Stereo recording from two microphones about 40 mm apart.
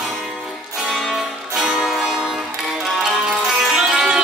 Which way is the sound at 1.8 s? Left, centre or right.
Centre.